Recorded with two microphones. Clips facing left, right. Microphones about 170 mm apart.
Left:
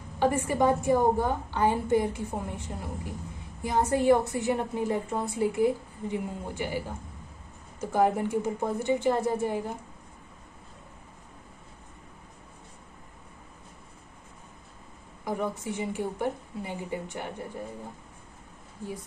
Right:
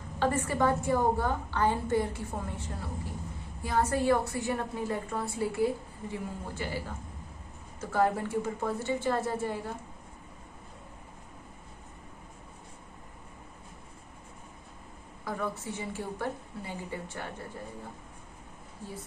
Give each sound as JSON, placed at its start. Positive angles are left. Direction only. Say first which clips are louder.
{"t": 0.2, "sound": "a woman's voice", "louder": "left 3 dB", "side_deg": 15}
{"t": 7.8, "sound": "a woman's voice", "louder": "left 3 dB", "side_deg": 15}
{"t": 15.2, "sound": "a woman's voice", "louder": "left 4 dB", "side_deg": 15}